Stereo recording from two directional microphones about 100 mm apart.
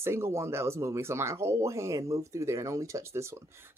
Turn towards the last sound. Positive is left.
turn(degrees=-25)  # may be behind; listen again after turning